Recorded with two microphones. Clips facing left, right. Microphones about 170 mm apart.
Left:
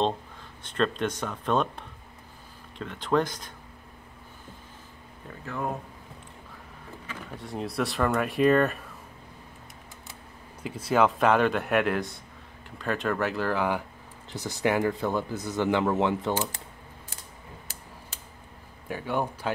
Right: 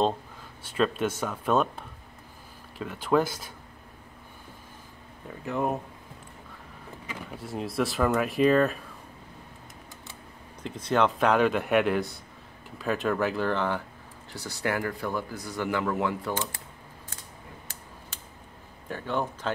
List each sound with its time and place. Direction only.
0.7 s speech: 5° right (ahead or behind)
5.4 s speech: 20° right (ahead or behind)
7.1 s speech: 5° right (ahead or behind)
10.6 s speech: 5° left (ahead or behind); by 16.3 s 25° left (ahead or behind)
18.9 s speech: 10° left (ahead or behind)